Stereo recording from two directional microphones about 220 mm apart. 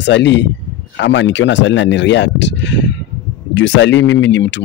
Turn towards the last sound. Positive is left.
turn(degrees=55)  # may be behind; listen again after turning